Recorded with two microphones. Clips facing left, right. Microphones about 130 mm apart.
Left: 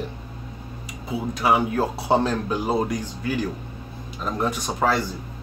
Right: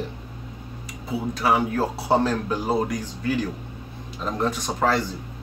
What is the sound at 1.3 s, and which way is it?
Speech, 15° left (ahead or behind).